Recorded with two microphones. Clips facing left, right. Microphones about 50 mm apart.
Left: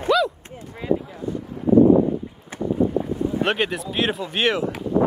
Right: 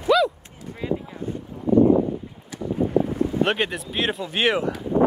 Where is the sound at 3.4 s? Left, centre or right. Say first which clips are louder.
Even; centre.